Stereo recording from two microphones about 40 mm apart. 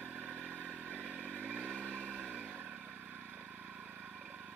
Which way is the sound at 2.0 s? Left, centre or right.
Right.